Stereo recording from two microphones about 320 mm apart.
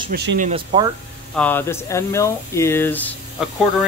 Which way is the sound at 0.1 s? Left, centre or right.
Right.